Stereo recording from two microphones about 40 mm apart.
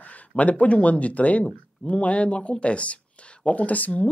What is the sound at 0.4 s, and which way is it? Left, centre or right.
Speech, left.